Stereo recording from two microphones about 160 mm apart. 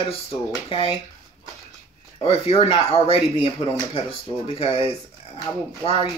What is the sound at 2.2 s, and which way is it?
Speech, 35° left (ahead or behind).